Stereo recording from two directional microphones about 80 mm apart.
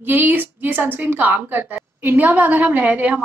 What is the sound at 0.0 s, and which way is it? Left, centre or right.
A woman's voice, right.